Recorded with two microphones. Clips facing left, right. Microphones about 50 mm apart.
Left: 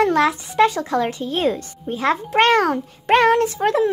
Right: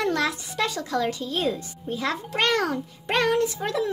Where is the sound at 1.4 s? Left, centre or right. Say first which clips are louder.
Left 8 dB; left.